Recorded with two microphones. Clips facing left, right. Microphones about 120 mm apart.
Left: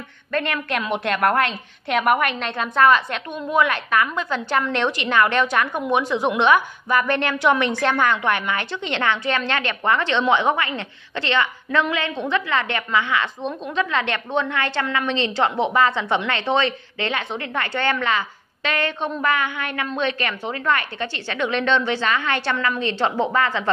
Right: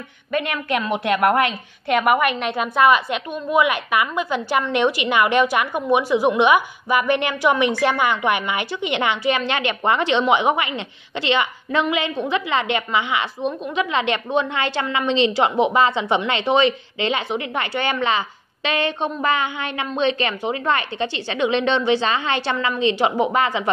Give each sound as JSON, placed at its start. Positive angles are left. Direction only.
{"t": 0.3, "sound": "a woman's voice", "side_deg": -10}